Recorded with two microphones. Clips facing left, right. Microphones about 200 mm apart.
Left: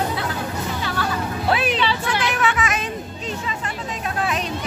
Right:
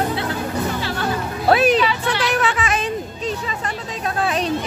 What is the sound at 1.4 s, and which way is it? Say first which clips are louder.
Music: right 7 dB; 40° right (ahead or behind).